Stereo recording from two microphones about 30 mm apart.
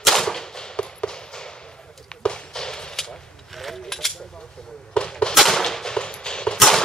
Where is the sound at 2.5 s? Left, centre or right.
Left.